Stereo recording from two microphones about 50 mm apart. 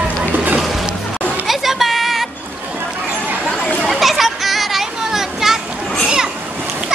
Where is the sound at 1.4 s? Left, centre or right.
Centre.